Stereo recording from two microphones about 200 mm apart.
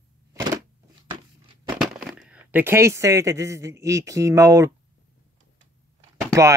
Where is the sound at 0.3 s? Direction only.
20° right (ahead or behind).